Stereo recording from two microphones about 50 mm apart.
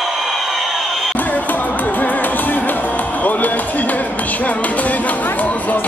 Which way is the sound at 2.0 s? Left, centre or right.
Left.